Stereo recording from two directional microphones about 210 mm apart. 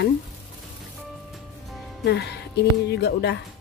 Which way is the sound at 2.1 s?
55° left (ahead or behind).